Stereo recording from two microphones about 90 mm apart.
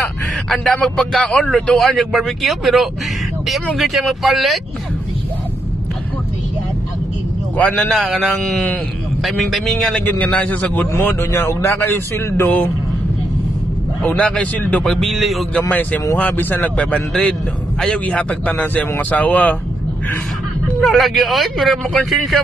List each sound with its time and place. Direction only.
0.5 s speech: 10° left (ahead or behind)
7.5 s a man's voice: 15° left (ahead or behind)
8.1 s speech: 5° left (ahead or behind)
10.0 s a man's voice: 20° left (ahead or behind)
14.0 s a man's voice: 15° left (ahead or behind)
15.7 s a man's voice: 20° left (ahead or behind)
20.8 s speech: 5° left (ahead or behind)